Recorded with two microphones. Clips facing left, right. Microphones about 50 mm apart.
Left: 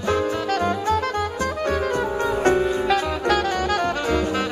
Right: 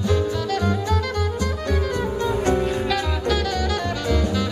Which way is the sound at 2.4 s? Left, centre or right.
Left.